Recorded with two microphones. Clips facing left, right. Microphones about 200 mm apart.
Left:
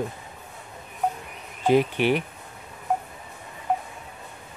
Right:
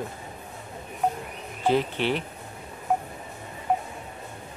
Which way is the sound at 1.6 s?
15° left (ahead or behind).